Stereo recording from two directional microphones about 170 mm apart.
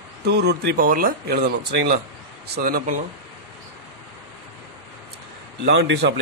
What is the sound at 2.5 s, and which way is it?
Speech, 60° right (ahead or behind).